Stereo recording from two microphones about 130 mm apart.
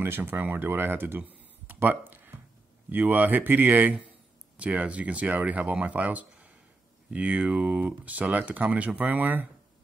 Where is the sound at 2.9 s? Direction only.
15° right (ahead or behind).